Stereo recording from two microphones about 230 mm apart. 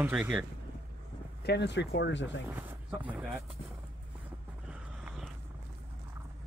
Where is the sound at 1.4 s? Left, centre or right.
Left.